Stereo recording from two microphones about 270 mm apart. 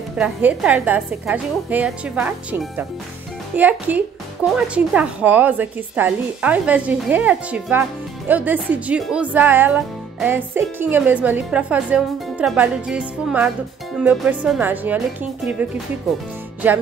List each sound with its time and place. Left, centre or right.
0.2 s speech: centre